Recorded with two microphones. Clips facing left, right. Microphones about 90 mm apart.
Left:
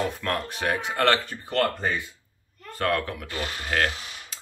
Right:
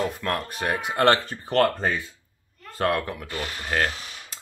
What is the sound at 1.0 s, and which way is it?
Speech, 30° right (ahead or behind).